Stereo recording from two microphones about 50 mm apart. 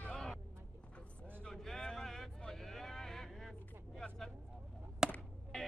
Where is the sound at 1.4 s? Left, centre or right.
Centre.